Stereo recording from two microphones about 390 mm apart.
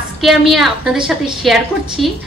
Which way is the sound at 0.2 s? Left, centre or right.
Centre.